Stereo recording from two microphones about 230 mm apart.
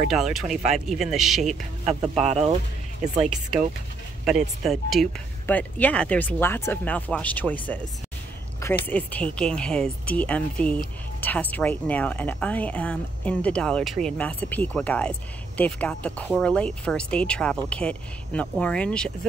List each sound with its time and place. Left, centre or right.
0.1 s speech: centre
2.2 s speech: right
4.2 s speech: centre